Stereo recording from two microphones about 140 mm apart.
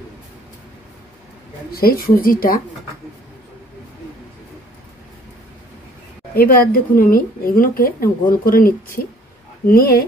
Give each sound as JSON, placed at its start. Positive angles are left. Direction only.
{"t": 1.7, "sound": "speech", "side_deg": 90}
{"t": 6.3, "sound": "speech", "side_deg": 90}